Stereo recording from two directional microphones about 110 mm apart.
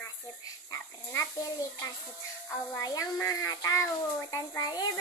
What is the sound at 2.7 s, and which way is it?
A child's voice, 30° left (ahead or behind).